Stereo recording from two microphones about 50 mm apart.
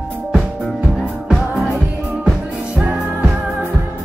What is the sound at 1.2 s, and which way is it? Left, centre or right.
Music, centre.